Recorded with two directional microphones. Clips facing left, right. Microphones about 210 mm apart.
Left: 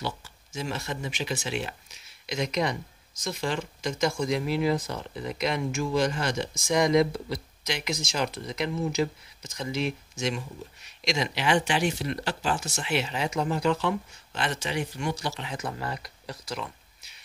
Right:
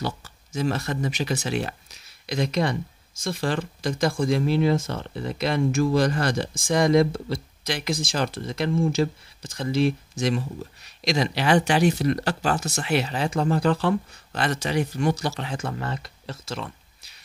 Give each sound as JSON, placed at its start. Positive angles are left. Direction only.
{"t": 0.0, "sound": "speech", "side_deg": -40}